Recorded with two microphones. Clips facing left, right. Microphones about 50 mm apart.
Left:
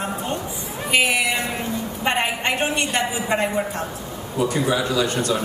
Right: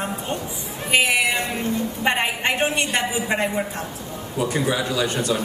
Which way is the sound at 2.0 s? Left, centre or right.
Centre.